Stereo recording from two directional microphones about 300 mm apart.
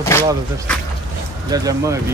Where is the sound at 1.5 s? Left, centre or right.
Centre.